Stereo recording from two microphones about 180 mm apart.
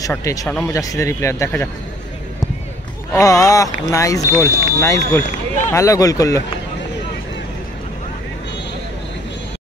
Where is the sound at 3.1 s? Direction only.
20° left (ahead or behind).